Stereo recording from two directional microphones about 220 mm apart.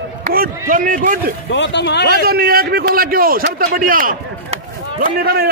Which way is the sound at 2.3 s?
45° right (ahead or behind).